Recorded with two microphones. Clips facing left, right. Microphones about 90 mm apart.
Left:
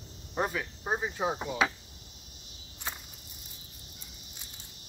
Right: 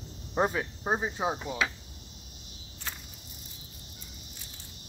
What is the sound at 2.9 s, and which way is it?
Cricket, 20° left (ahead or behind).